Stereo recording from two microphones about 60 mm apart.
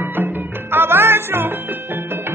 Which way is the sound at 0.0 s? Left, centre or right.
Right.